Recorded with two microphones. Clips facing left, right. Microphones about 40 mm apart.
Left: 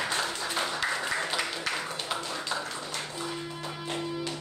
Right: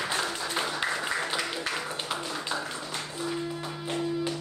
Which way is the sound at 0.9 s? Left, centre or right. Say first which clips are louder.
Even; centre.